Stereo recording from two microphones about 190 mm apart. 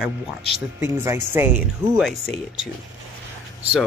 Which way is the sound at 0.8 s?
15° right (ahead or behind).